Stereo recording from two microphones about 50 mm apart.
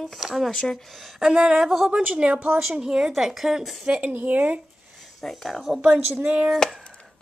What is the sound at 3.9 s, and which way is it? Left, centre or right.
Speech, right.